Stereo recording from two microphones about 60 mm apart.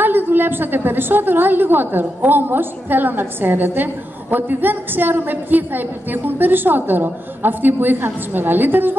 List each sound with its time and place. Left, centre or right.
0.0 s a woman's voice: right